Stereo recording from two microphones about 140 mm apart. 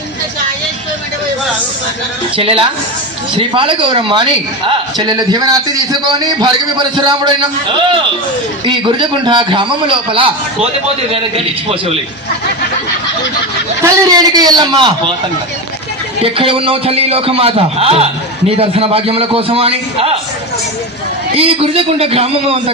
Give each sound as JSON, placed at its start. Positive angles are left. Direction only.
{"t": 2.3, "sound": "a man's voice", "side_deg": -40}
{"t": 8.6, "sound": "a man's voice", "side_deg": -35}
{"t": 13.8, "sound": "a man's voice", "side_deg": -25}
{"t": 16.2, "sound": "a man's voice", "side_deg": -40}
{"t": 21.4, "sound": "a man's voice", "side_deg": -45}